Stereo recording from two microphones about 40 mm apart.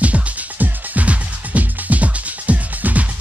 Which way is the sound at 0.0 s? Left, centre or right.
Right.